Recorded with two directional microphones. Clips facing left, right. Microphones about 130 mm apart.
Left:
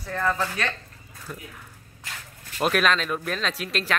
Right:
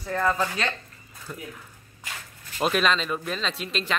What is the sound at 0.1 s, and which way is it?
Speech, 15° right (ahead or behind).